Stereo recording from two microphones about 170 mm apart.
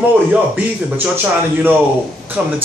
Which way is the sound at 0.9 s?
10° right (ahead or behind).